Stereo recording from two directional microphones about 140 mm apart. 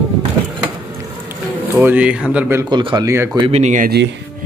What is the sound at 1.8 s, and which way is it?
Speech, 10° right (ahead or behind).